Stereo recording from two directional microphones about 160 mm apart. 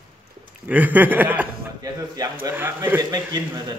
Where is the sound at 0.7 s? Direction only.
10° right (ahead or behind).